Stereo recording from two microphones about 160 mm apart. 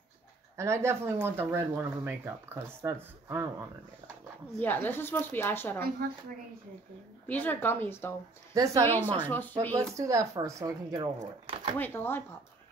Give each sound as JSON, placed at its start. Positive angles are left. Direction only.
{"t": 0.6, "sound": "speech", "side_deg": -15}
{"t": 4.6, "sound": "speech", "side_deg": 10}
{"t": 7.2, "sound": "speech", "side_deg": 10}
{"t": 8.5, "sound": "speech", "side_deg": -20}
{"t": 8.8, "sound": "speech", "side_deg": 15}
{"t": 9.9, "sound": "speech", "side_deg": -20}
{"t": 11.4, "sound": "a sound", "side_deg": -35}
{"t": 11.8, "sound": "speech", "side_deg": 10}